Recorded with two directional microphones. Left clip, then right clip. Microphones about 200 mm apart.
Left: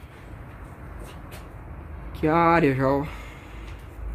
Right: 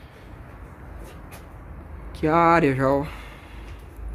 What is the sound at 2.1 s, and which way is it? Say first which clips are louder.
Speech: right 2 dB; 10° right (ahead or behind).